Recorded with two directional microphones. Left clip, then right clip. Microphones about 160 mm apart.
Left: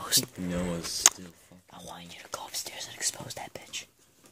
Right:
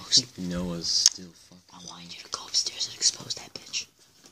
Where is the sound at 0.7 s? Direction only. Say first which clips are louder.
Right 8 dB; 50° left (ahead or behind).